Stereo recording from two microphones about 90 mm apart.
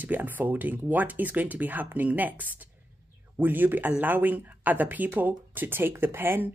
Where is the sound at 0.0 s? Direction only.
20° right (ahead or behind).